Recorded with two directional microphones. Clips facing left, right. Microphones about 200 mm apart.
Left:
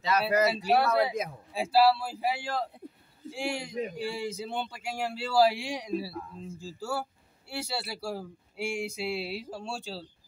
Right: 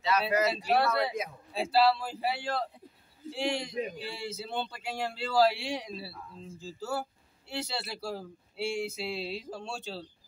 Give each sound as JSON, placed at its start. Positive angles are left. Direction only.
{"t": 0.0, "sound": "speech", "side_deg": 40}
{"t": 0.5, "sound": "speech", "side_deg": 10}